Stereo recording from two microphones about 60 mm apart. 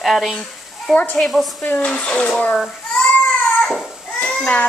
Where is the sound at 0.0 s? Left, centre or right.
Centre.